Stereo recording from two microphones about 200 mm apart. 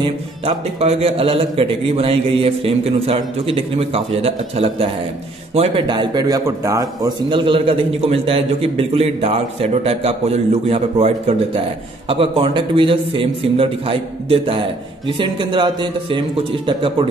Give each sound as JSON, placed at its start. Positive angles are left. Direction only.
{"t": 0.0, "sound": "speech", "side_deg": -25}